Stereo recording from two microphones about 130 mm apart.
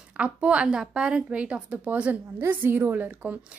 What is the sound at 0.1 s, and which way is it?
A woman's voice, 10° right (ahead or behind).